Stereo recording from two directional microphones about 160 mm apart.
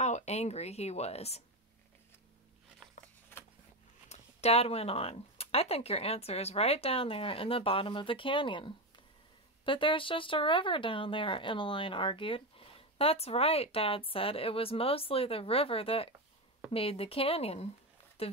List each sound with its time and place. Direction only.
0.0 s speech: 45° left (ahead or behind)
2.8 s a sound: 15° left (ahead or behind)
4.1 s speech: 40° left (ahead or behind)